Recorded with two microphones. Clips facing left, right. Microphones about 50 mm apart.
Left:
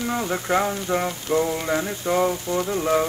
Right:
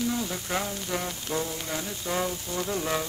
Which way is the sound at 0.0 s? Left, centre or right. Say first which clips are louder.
Left 5 dB; left.